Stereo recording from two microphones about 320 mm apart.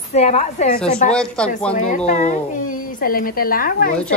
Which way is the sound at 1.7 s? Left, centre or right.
Left.